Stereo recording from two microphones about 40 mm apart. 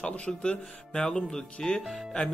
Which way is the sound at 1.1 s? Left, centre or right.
Centre.